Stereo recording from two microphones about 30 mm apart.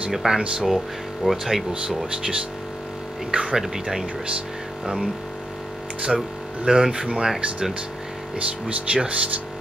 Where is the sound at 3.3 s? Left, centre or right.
Right.